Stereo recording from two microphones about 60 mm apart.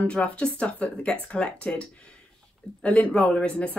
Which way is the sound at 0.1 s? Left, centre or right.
Centre.